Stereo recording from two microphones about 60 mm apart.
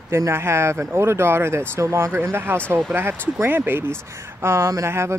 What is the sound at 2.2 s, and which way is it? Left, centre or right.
Speech, right.